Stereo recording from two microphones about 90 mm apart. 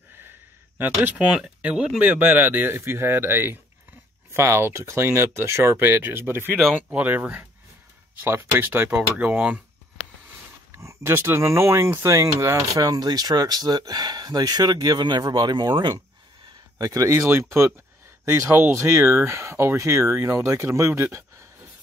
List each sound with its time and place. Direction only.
0.7 s speech: 20° right (ahead or behind)
10.7 s speech: 35° right (ahead or behind); by 16.0 s 60° right (ahead or behind)
16.7 s speech: 40° right (ahead or behind)